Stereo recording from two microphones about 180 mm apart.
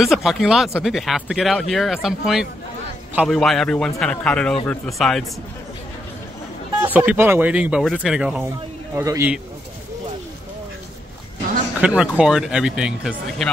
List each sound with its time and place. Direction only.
0.0 s speech: centre (ahead or behind)
6.8 s speech: 10° right (ahead or behind)
8.5 s speech: 15° right (ahead or behind)
11.8 s speech: 5° right (ahead or behind)